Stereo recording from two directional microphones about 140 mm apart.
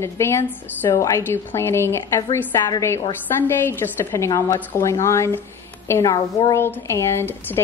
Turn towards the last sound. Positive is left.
turn(degrees=15)  # may be behind; listen again after turning